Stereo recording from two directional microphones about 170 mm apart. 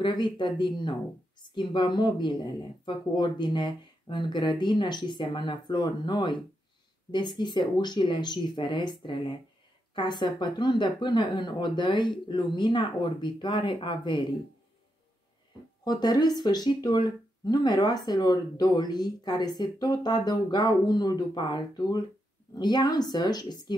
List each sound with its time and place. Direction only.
0.0 s speech: 25° left (ahead or behind)
15.8 s speech: 25° left (ahead or behind)